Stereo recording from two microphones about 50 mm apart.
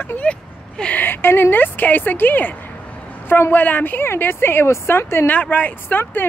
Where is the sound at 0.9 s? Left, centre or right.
Left.